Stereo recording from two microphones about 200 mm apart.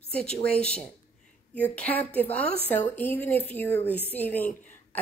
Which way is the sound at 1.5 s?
10° left (ahead or behind).